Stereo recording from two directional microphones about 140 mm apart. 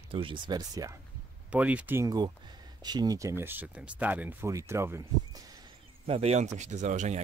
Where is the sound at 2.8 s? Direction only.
30° right (ahead or behind).